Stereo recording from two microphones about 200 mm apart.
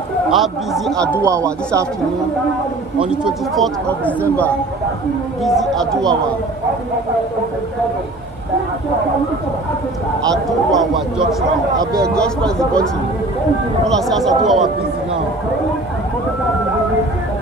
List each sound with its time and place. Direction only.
0.3 s speech: centre (ahead or behind)
1.1 s speech: 15° right (ahead or behind)
3.1 s speech: centre (ahead or behind)
5.4 s speech: centre (ahead or behind)
10.7 s speech: centre (ahead or behind)
11.8 s speech: 15° right (ahead or behind)
12.1 s speech: 5° left (ahead or behind)
14.0 s speech: centre (ahead or behind)